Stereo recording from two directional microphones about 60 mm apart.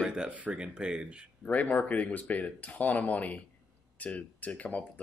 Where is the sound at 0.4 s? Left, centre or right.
Right.